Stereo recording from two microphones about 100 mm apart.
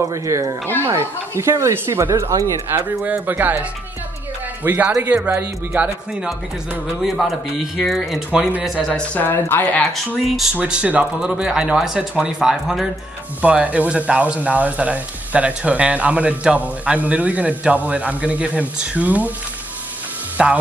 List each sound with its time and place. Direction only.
0.1 s speech: 35° right (ahead or behind)
3.0 s speech: 15° right (ahead or behind)
4.6 s speech: 20° right (ahead or behind)
7.0 s speech: centre (ahead or behind)
8.7 s speech: 10° left (ahead or behind)
10.1 s speech: centre (ahead or behind)
10.5 s speech: 15° right (ahead or behind)
20.4 s speech: 10° right (ahead or behind)